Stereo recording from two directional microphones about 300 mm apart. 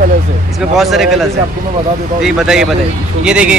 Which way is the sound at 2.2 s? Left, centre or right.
Centre.